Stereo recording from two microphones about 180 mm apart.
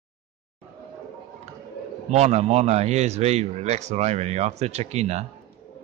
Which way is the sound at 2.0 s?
40° right (ahead or behind).